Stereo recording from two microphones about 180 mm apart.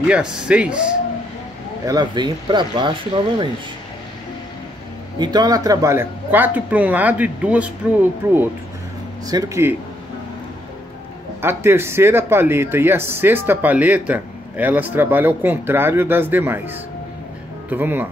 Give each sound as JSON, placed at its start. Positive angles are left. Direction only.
{"t": 0.0, "sound": "speech", "side_deg": -5}
{"t": 1.9, "sound": "speech", "side_deg": -25}
{"t": 5.2, "sound": "speech", "side_deg": -20}
{"t": 11.4, "sound": "speech", "side_deg": -15}